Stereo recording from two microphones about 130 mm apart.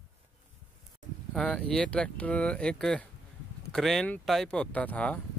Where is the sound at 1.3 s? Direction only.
5° left (ahead or behind).